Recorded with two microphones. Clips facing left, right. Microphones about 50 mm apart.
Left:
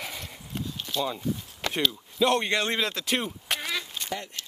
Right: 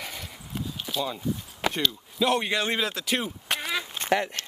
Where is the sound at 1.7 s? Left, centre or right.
Centre.